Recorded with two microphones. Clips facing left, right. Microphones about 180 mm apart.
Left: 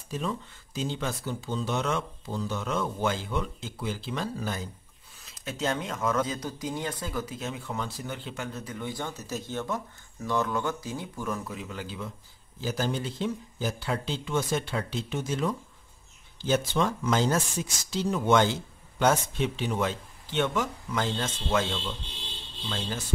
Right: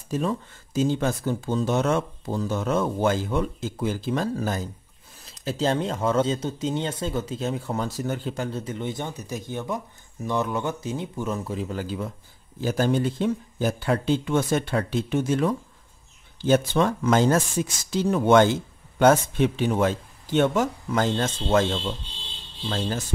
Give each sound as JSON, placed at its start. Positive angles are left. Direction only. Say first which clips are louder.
{"t": 0.1, "sound": "speech", "louder": "right 6 dB", "side_deg": -45}
{"t": 5.4, "sound": "speech", "louder": "right 6 dB", "side_deg": -30}
{"t": 11.5, "sound": "speech", "louder": "right 8 dB", "side_deg": -40}
{"t": 12.5, "sound": "speech", "louder": "right 7 dB", "side_deg": -55}